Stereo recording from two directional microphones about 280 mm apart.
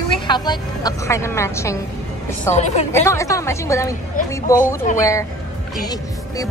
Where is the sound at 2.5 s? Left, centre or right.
Left.